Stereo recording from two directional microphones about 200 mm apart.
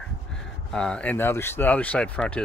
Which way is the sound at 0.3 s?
5° left (ahead or behind).